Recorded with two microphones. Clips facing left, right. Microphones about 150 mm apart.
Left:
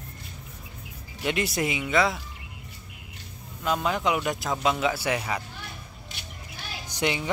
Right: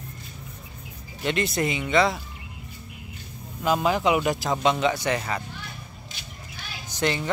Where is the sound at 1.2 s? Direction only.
10° left (ahead or behind).